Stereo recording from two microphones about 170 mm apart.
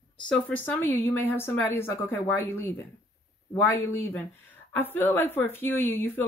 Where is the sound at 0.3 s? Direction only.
10° left (ahead or behind).